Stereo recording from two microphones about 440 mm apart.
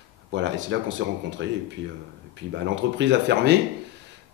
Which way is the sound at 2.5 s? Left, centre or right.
Right.